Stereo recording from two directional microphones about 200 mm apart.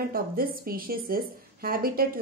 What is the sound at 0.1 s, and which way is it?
A woman's voice, 45° right (ahead or behind).